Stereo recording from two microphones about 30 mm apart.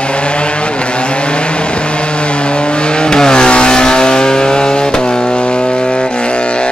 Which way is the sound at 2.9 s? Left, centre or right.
Left.